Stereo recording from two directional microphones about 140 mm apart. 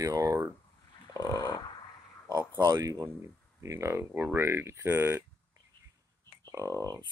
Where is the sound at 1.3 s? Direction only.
25° left (ahead or behind).